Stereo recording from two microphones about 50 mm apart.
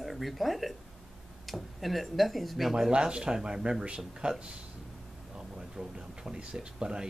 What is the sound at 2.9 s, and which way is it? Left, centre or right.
Speech, centre.